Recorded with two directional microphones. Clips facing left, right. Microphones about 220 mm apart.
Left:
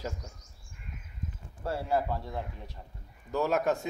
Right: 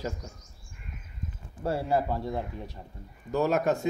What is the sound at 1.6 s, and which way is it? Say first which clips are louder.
Speech: right 3 dB; 15° right (ahead or behind).